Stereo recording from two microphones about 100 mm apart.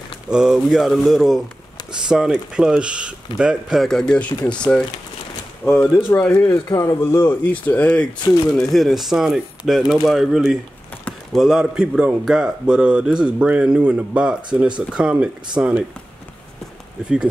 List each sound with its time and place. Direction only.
0.3 s speech: 5° right (ahead or behind); by 6.5 s 15° left (ahead or behind)
6.5 s speech: 35° left (ahead or behind)
7.0 s speech: 25° left (ahead or behind)
8.5 s a man's voice: centre (ahead or behind); by 15.7 s 15° right (ahead or behind)